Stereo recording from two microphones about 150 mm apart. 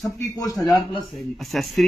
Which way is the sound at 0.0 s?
20° left (ahead or behind).